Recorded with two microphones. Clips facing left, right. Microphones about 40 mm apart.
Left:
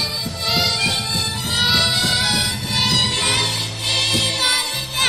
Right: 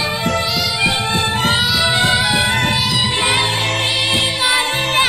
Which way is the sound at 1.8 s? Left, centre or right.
Right.